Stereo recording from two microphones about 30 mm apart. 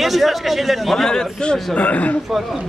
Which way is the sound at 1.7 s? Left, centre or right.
Left.